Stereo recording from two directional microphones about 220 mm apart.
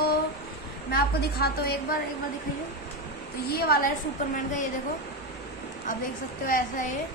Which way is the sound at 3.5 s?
45° left (ahead or behind).